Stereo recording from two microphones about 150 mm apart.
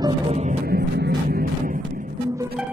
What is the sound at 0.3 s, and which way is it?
Music, 50° right (ahead or behind).